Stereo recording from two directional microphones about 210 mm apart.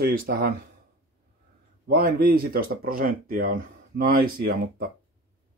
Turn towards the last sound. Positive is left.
turn(degrees=-45)  # may be behind; listen again after turning